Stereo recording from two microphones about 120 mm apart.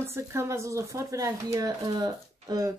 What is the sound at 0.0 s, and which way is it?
Speech, 20° right (ahead or behind).